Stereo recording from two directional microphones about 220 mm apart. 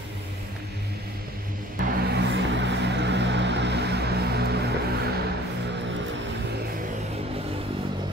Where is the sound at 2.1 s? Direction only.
55° right (ahead or behind).